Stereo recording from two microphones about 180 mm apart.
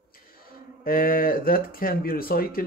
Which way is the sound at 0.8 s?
50° left (ahead or behind).